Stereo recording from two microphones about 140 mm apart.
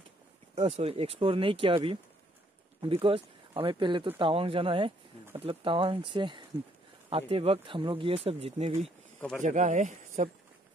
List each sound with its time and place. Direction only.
0.6 s speech: 45° right (ahead or behind)
2.8 s speech: 40° right (ahead or behind)
9.4 s speech: 60° right (ahead or behind)